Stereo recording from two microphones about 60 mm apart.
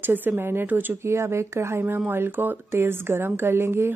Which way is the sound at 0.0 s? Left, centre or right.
Right.